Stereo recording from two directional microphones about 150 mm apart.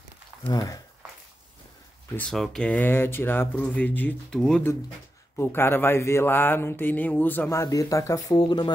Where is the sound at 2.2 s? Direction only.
5° left (ahead or behind).